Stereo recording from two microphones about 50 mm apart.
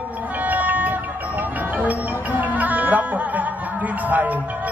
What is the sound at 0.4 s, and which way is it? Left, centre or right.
Music, right.